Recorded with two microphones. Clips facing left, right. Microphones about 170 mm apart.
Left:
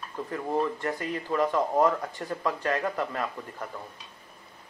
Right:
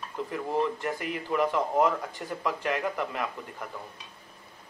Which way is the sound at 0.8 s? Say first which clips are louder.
Left 1 dB; 10° right (ahead or behind).